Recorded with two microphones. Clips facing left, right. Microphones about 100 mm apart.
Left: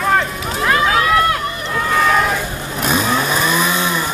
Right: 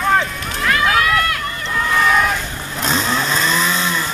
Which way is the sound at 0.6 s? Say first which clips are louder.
Left 1 dB; 25° left (ahead or behind).